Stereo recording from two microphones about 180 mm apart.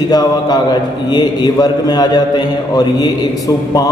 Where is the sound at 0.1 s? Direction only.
20° left (ahead or behind).